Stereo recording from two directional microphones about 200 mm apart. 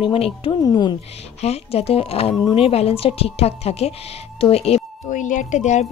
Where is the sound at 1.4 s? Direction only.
30° left (ahead or behind).